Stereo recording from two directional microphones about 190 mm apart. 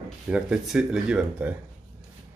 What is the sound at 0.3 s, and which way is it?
Speech, 5° right (ahead or behind).